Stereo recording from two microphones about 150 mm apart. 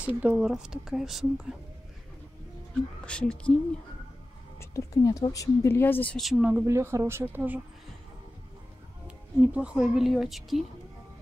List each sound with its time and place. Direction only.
0.0 s speech: 10° right (ahead or behind)
3.1 s speech: 5° left (ahead or behind)
4.6 s a woman's voice: 20° left (ahead or behind)
6.2 s speech: 5° right (ahead or behind)
9.0 s a woman's voice: 10° right (ahead or behind)